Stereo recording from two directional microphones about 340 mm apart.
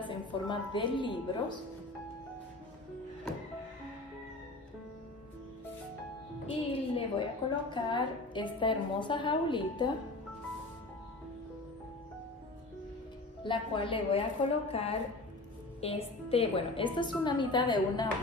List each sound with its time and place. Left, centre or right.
0.0 s a woman's voice: centre
6.5 s a woman's voice: centre
13.4 s a woman's voice: centre